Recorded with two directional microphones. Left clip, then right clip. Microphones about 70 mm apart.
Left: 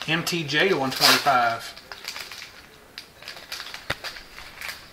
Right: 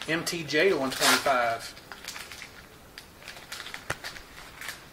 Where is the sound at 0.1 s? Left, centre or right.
Right.